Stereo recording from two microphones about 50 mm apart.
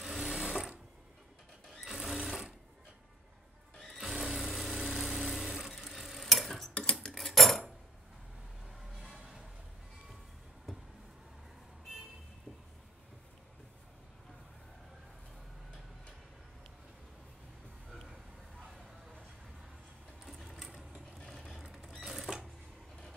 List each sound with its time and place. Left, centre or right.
0.0 s sewing machine: centre
3.7 s music: centre
6.9 s cutlery: centre
7.2 s cutlery: centre
9.1 s music: centre
20.2 s sewing machine: centre
21.3 s vehicle: centre
22.0 s cash register: centre